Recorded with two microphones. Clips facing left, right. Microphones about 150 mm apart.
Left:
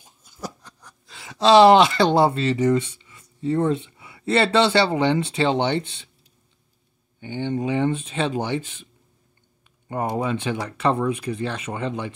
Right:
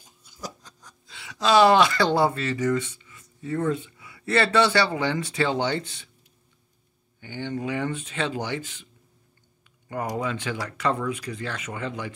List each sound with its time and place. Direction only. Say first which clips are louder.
0.2 s a sound: left 3 dB; 55° left (ahead or behind)
1.1 s speech: left 6 dB; 35° left (ahead or behind)
7.2 s speech: left 5 dB; 20° left (ahead or behind)
9.8 s speech: left 4 dB; 25° left (ahead or behind)